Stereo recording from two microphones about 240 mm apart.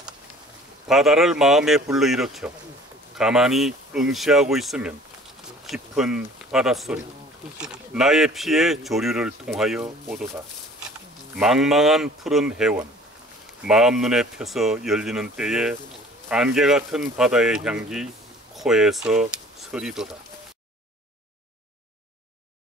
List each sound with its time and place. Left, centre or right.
0.8 s speech: centre